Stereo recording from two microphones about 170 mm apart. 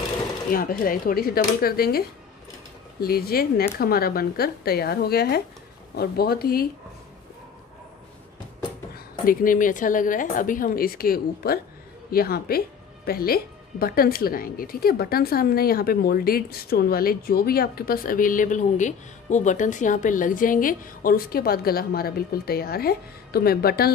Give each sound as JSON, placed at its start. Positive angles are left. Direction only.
{"t": 0.5, "sound": "speech", "side_deg": 55}
{"t": 8.9, "sound": "a woman's voice", "side_deg": 55}